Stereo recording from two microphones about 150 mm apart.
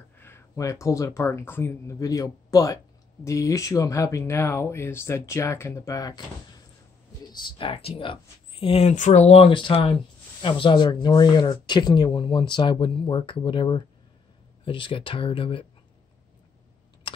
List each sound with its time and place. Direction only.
0.2 s speech: 20° left (ahead or behind)
7.4 s speech: 35° left (ahead or behind)
8.9 s speech: 50° left (ahead or behind); by 15.6 s 35° left (ahead or behind)